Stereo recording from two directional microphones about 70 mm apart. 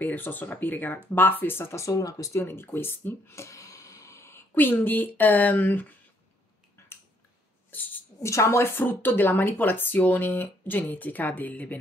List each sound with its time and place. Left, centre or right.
0.0 s speech: left
1.9 s speech: left
2.3 s speech: left
4.6 s speech: left
6.8 s finger snapping: left
8.2 s speech: left